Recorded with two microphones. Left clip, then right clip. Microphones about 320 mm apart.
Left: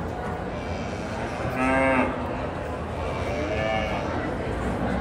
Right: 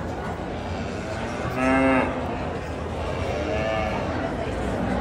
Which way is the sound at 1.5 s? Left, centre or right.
Left.